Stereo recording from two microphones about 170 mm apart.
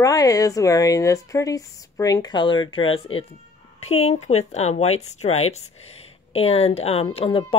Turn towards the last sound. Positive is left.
turn(degrees=35)  # may be behind; listen again after turning